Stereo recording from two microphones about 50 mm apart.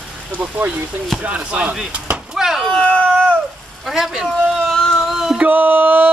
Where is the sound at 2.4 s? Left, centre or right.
Centre.